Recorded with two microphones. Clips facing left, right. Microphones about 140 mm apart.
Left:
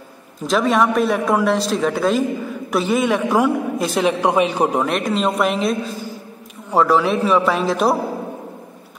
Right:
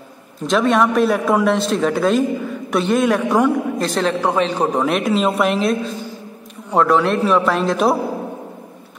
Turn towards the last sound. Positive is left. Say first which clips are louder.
# right 1 dB
turn(degrees=0)  # may be behind; listen again after turning